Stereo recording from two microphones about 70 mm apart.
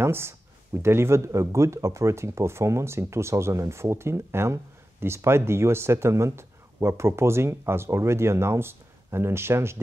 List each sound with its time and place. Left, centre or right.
0.0 s speech: right